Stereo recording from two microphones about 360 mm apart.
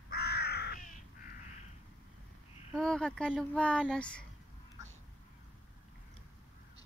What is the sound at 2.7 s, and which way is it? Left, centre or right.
Speech, centre.